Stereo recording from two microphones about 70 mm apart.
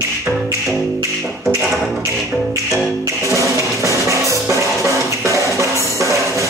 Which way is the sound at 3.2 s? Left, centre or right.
Right.